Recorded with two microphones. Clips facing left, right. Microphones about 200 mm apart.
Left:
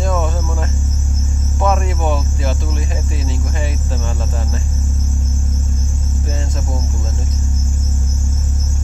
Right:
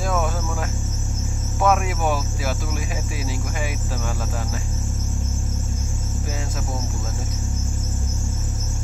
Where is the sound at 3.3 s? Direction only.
10° right (ahead or behind).